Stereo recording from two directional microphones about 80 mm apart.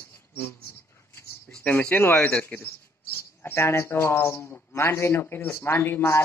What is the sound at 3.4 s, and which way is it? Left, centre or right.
Speech, left.